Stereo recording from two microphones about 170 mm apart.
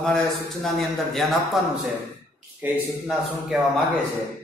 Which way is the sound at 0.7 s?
Centre (ahead or behind).